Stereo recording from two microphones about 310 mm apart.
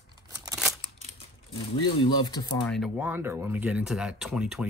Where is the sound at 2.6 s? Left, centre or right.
Centre.